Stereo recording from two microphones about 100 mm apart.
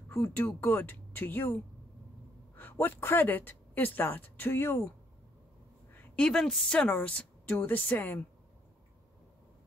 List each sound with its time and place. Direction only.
0.2 s speech: 20° left (ahead or behind)
2.5 s speech: 20° left (ahead or behind)
6.1 s a woman's voice: 10° left (ahead or behind)